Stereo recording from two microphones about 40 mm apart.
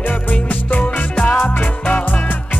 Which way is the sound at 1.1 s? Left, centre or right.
Left.